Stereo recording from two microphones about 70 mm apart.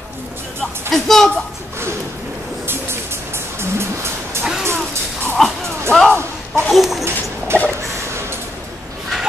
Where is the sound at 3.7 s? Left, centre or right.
Right.